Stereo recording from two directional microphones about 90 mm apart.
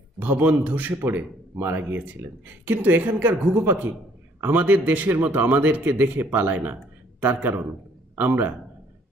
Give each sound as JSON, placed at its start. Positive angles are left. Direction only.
{"t": 0.2, "sound": "a man's voice", "side_deg": -20}